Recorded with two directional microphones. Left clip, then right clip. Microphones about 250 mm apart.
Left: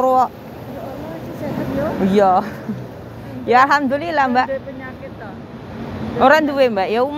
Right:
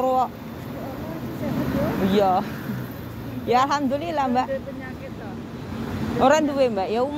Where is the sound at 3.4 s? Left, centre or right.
Centre.